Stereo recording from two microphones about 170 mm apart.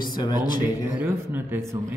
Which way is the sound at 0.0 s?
25° left (ahead or behind).